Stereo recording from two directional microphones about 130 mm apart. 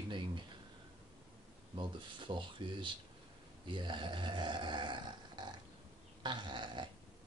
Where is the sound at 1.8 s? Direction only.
40° right (ahead or behind).